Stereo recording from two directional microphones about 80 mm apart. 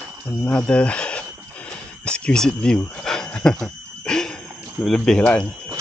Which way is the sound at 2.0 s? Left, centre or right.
Centre.